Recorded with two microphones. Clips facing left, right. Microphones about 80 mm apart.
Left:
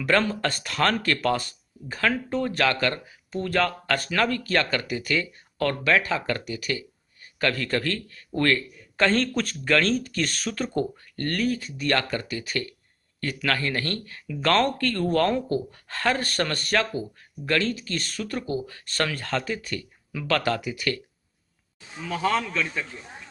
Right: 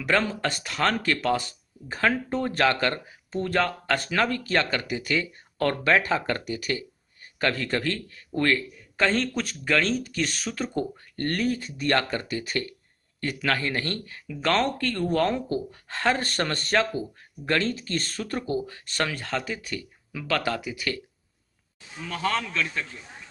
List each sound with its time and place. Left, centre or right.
0.0 s speech: centre
11.1 s speech: right
18.7 s speech: centre
21.9 s a man's voice: centre